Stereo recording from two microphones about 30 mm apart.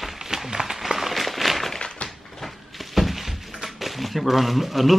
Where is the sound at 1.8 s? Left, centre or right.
Left.